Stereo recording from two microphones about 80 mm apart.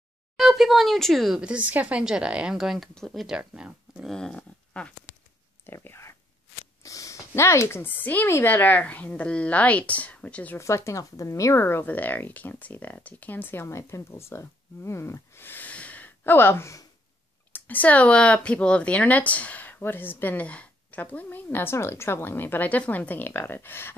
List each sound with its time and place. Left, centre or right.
0.4 s speech: centre
1.4 s speech: centre
4.1 s speech: centre
4.4 s a sound: centre
5.7 s speech: left
6.8 s speech: left
8.3 s speech: left
8.5 s speech: left
10.6 s speech: left
11.6 s speech: left